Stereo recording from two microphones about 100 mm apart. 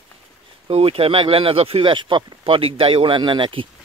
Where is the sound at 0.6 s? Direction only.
75° right (ahead or behind); by 3.7 s 55° right (ahead or behind).